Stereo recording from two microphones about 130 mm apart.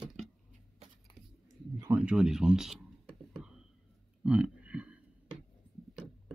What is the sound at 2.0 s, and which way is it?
Speech, 5° right (ahead or behind).